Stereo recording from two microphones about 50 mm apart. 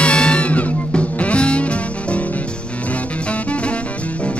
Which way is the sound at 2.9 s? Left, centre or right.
Left.